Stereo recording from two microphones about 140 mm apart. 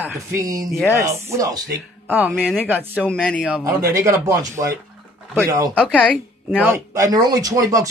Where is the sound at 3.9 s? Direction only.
20° right (ahead or behind).